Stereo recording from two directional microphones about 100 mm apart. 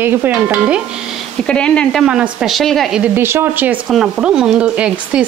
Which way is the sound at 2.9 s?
15° right (ahead or behind).